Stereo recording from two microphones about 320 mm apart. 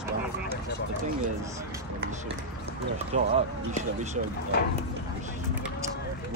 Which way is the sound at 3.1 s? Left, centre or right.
Right.